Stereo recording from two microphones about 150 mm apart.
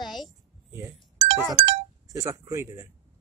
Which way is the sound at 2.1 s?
20° right (ahead or behind).